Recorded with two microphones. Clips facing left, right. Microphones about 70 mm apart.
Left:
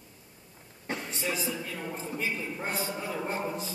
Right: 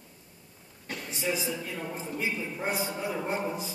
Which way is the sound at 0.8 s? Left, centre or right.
Left.